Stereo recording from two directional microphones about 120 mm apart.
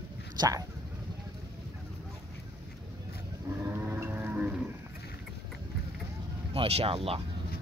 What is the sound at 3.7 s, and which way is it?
Music, 20° right (ahead or behind).